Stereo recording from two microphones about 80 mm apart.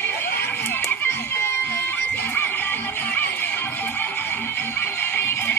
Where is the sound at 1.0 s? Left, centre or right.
Left.